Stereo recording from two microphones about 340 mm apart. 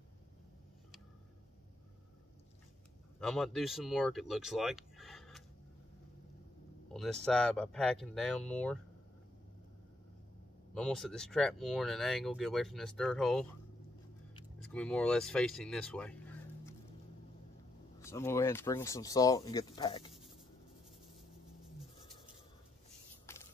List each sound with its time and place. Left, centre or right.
3.2 s speech: centre
6.9 s a sound: centre
7.2 s speech: centre
10.7 s speech: centre
14.7 s speech: centre
18.0 s speech: centre
23.3 s a sound: centre